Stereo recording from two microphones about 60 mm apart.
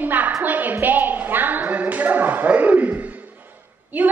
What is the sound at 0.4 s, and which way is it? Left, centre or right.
Speech, right.